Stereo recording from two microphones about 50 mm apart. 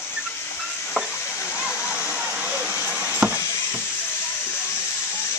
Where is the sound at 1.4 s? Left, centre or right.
Right.